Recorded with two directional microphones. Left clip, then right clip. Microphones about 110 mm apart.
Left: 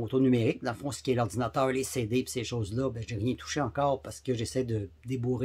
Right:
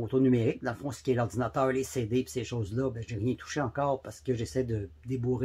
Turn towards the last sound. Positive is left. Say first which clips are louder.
# right 1 dB
turn(degrees=15)  # may be behind; listen again after turning